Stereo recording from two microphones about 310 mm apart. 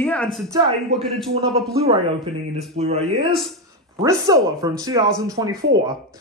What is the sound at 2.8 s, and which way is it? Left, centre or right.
Speech, centre.